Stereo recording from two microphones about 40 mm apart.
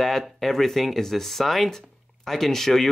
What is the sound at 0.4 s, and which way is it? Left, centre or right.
Speech, centre.